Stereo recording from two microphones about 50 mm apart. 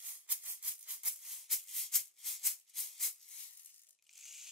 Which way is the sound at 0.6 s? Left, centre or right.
Right.